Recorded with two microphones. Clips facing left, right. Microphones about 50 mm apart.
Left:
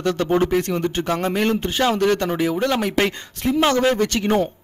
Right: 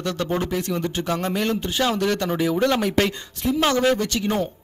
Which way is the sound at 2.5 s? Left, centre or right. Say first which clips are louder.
Even; centre.